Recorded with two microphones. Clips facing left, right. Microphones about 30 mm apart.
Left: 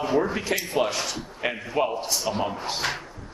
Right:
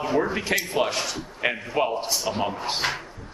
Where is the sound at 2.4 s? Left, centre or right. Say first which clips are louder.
Right 1 dB; centre.